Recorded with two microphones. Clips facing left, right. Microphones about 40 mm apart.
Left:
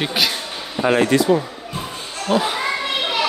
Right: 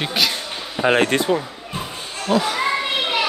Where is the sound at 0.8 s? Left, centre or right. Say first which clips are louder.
Left 1 dB; right.